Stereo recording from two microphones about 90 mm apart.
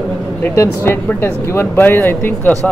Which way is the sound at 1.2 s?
30° left (ahead or behind).